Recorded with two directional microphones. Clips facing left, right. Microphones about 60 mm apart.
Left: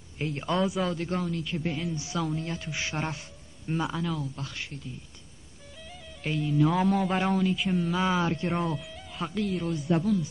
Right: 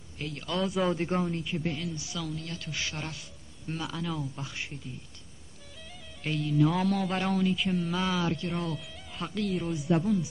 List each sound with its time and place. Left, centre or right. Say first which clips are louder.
0.2 s speech: left 5 dB; left
0.9 s speech: right 1 dB; right
1.6 s speech: left 2 dB; centre
2.0 s speech: left 6 dB; left
3.6 s speech: left 5 dB; centre
4.0 s speech: left 2 dB; centre
4.4 s speech: even; centre
5.9 s music: left 1 dB; centre
6.7 s speech: left 3 dB; centre
8.0 s speech: left 3 dB; left
8.9 s speech: left 3 dB; centre